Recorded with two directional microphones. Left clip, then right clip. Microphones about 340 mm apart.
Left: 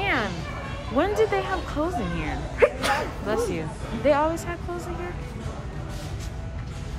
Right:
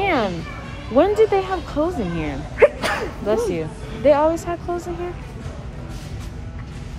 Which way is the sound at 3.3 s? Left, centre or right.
Centre.